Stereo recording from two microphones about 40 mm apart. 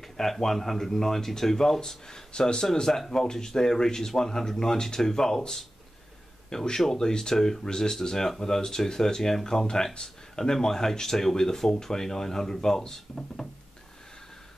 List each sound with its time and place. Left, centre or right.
0.0 s speech: centre